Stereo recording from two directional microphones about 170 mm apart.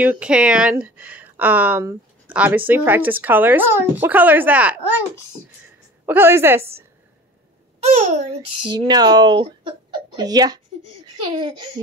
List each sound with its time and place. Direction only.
0.0 s speech: 10° right (ahead or behind)
6.0 s speech: 15° right (ahead or behind)
7.8 s a child's voice: 40° right (ahead or behind)
8.6 s speech: 25° right (ahead or behind)